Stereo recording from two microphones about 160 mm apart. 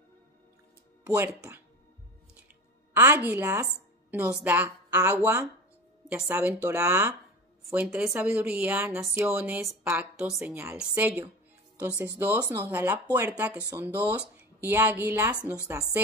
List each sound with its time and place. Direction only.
1.0 s a woman's voice: 20° right (ahead or behind)
2.9 s a woman's voice: 15° right (ahead or behind)
7.7 s a woman's voice: 5° right (ahead or behind)